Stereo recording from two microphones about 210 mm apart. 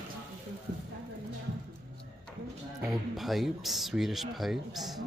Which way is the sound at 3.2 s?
Centre (ahead or behind).